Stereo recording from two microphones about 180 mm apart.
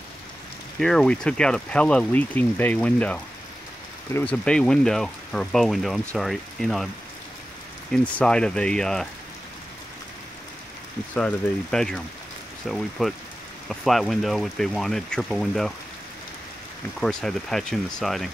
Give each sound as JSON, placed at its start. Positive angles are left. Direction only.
{"t": 0.7, "sound": "speech", "side_deg": 5}
{"t": 7.9, "sound": "speech", "side_deg": 5}
{"t": 11.1, "sound": "speech", "side_deg": 5}
{"t": 17.0, "sound": "speech", "side_deg": 5}